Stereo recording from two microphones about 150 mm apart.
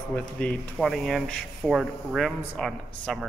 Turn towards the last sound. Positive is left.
turn(degrees=5)  # may be behind; listen again after turning